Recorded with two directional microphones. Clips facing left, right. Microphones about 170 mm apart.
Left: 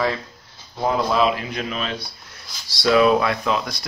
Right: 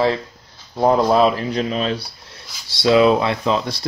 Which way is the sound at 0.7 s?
40° right (ahead or behind).